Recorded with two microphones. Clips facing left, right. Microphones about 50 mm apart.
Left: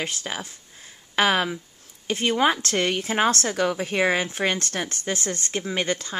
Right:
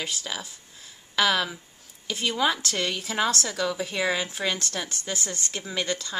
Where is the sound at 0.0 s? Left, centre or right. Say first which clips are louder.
Left 3 dB; left.